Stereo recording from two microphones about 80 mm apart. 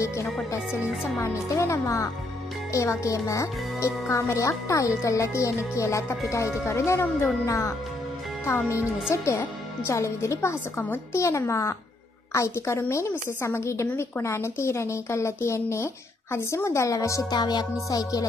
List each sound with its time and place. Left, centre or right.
0.0 s music: left
1.2 s speech: left
17.3 s music: left
17.8 s music: left